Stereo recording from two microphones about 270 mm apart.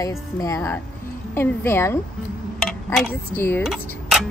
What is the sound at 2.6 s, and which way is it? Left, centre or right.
Dishes, centre.